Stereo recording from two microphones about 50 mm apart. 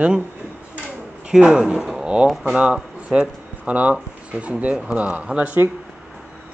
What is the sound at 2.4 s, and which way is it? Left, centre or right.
Speech, right.